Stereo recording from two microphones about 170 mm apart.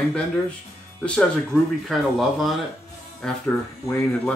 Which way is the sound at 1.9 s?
Centre (ahead or behind).